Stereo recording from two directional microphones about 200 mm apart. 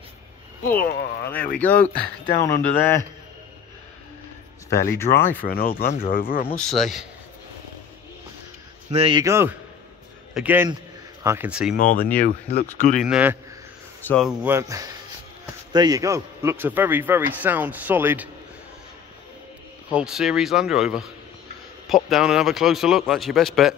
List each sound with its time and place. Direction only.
0.7 s speech: 45° left (ahead or behind)
1.3 s speech: 5° left (ahead or behind)
4.6 s speech: 15° left (ahead or behind)
5.5 s speech: 50° left (ahead or behind)
6.5 s a man's voice: centre (ahead or behind)
8.9 s speech: 25° right (ahead or behind)
9.2 s a man's voice: 10° right (ahead or behind)
11.7 s speech: 45° left (ahead or behind)
13.0 s a man's voice: 5° right (ahead or behind)
14.0 s a man's voice: 5° left (ahead or behind)
14.4 s a man's voice: 15° right (ahead or behind)
19.9 s a man's voice: 5° right (ahead or behind)